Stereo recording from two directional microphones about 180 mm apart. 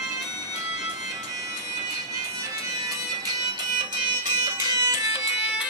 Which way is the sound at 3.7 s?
25° right (ahead or behind).